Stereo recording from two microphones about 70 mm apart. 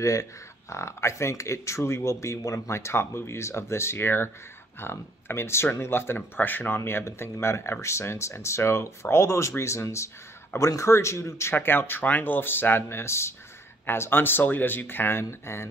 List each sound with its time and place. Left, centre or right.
0.0 s speech: left
11.5 s speech: left